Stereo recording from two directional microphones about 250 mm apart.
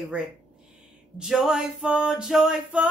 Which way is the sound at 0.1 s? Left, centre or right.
Centre.